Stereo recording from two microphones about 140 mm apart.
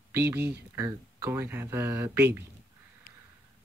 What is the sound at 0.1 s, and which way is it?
Speech, 15° right (ahead or behind).